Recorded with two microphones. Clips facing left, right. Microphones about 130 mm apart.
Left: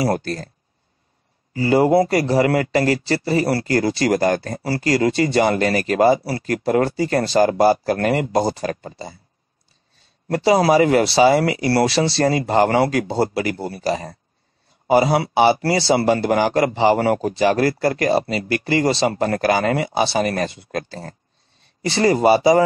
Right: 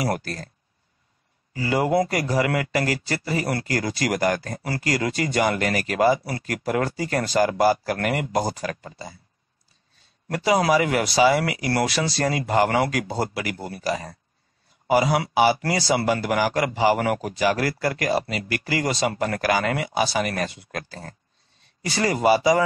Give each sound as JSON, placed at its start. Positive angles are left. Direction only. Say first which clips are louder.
{"t": 0.0, "sound": "a man's voice", "louder": "left 5 dB", "side_deg": 30}
{"t": 1.5, "sound": "a man's voice", "louder": "left 6 dB", "side_deg": 30}
{"t": 10.2, "sound": "a man's voice", "louder": "left 5 dB", "side_deg": 30}